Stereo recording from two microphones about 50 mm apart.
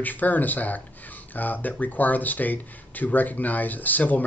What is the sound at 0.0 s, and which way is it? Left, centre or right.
Speech, left.